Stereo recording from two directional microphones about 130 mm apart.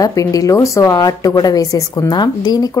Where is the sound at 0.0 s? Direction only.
25° left (ahead or behind).